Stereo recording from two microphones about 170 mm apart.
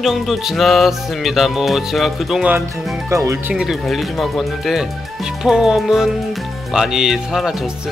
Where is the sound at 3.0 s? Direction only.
20° right (ahead or behind).